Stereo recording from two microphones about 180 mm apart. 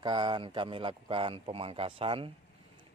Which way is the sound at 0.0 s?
25° right (ahead or behind).